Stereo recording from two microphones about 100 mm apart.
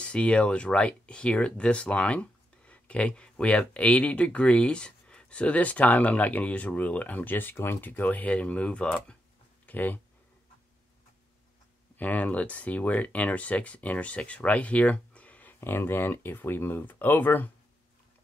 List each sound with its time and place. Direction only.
0.0 s speech: 10° left (ahead or behind)
12.0 s speech: 15° left (ahead or behind)